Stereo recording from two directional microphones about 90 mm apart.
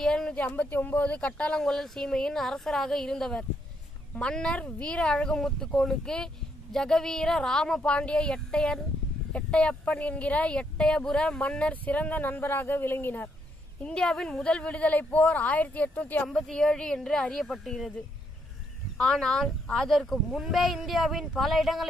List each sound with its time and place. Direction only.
0.0 s a sound: 10° left (ahead or behind)
0.5 s speech: 20° left (ahead or behind)
13.8 s speech: 10° left (ahead or behind)
16.3 s speech: 5° left (ahead or behind)
18.9 s speech: 5° left (ahead or behind)